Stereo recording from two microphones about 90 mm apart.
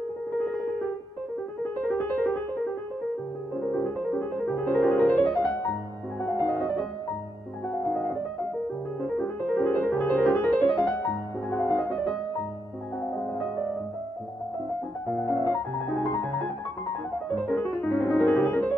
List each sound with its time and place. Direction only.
1.9 s music: 25° left (ahead or behind)
3.7 s music: 20° left (ahead or behind)
5.3 s music: 5° left (ahead or behind)
7.6 s piano: 5° left (ahead or behind)
9.2 s music: 20° left (ahead or behind)
11.7 s music: 5° left (ahead or behind)
15.1 s piano: centre (ahead or behind)
17.4 s music: 10° left (ahead or behind)